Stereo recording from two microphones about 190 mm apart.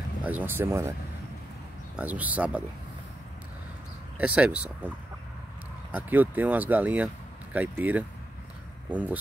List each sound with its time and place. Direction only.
0.2 s speech: 10° right (ahead or behind)
2.0 s speech: 10° right (ahead or behind)
4.2 s speech: 5° right (ahead or behind)